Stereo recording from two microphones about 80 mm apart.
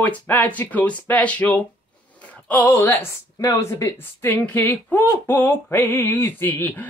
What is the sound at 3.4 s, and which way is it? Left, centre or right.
A woman's voice, left.